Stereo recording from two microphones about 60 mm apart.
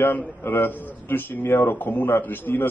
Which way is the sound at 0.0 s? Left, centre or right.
Left.